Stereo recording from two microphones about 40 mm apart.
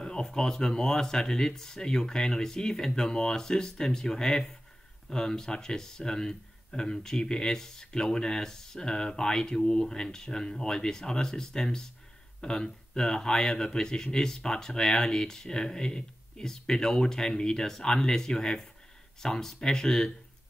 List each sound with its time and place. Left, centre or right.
0.0 s speech: centre